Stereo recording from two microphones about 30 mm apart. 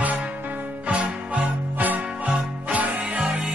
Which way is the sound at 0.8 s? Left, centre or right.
Right.